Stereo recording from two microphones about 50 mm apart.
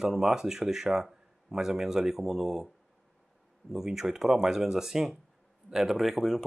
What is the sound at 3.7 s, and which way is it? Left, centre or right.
Speech, centre.